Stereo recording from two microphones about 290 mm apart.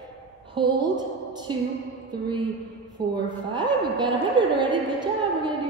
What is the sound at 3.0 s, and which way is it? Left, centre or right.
A woman's voice, centre.